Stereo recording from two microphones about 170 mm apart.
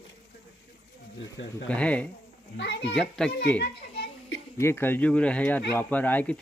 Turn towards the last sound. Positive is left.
turn(degrees=10)  # may be behind; listen again after turning